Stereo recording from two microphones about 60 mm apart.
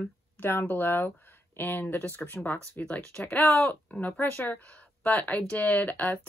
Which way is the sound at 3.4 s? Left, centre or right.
Left.